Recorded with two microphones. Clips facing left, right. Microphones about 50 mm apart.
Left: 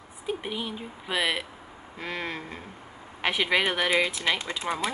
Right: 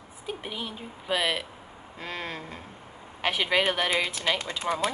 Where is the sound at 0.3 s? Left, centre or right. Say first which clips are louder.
Left 3 dB; centre.